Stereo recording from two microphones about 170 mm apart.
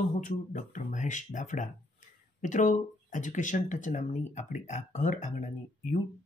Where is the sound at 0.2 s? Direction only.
45° left (ahead or behind).